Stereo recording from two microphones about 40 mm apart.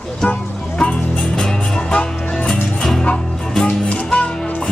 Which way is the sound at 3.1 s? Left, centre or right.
Centre.